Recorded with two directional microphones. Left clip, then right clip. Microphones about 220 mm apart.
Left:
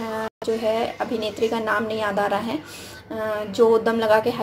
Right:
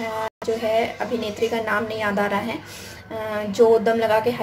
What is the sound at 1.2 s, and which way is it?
A woman's voice, 20° left (ahead or behind).